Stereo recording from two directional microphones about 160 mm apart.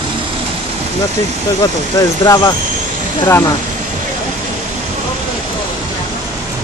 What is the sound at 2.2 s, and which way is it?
Speech, 25° left (ahead or behind).